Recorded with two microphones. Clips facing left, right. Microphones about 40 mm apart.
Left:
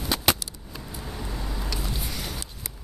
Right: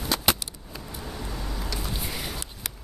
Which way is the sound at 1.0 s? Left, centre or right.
Centre.